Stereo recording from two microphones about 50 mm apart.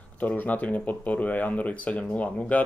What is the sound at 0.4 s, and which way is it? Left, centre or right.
Speech, left.